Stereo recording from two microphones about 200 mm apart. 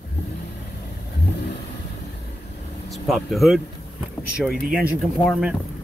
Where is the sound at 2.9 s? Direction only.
Centre (ahead or behind).